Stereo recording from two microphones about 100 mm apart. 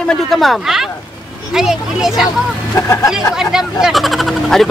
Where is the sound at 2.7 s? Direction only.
30° left (ahead or behind).